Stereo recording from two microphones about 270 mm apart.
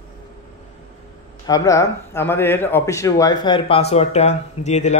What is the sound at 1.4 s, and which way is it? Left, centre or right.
Speech, centre.